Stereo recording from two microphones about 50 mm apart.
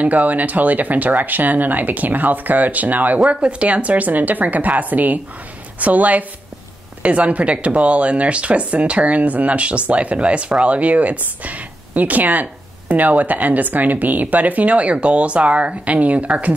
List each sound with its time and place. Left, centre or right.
0.0 s speech: right
3.3 s speech: right